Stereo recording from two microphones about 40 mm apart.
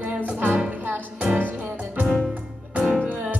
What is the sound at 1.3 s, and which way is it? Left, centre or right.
Music, right.